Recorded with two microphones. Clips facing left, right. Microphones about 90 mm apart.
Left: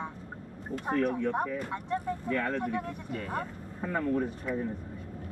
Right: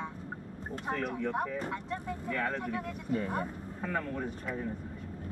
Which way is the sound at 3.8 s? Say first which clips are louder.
Left 5 dB; 10° left (ahead or behind).